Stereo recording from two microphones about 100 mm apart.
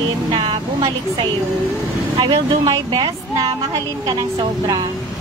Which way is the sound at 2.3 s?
45° right (ahead or behind).